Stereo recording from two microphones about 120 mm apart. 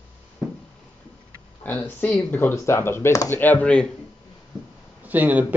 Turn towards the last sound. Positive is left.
turn(degrees=-15)  # may be behind; listen again after turning